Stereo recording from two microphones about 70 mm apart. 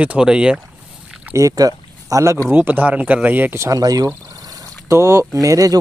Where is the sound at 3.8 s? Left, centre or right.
Right.